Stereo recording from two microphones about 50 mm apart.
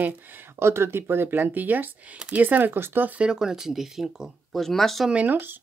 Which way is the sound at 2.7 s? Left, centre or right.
Right.